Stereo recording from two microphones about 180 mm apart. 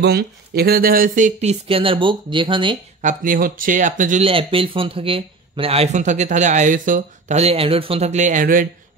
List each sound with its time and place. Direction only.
0.0 s speech: 60° right (ahead or behind); by 2.8 s 25° right (ahead or behind)
3.0 s speech: 45° right (ahead or behind)
4.2 s speech: 30° right (ahead or behind); by 8.6 s 50° right (ahead or behind)